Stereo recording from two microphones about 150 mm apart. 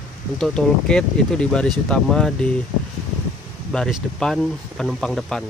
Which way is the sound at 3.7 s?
5° left (ahead or behind).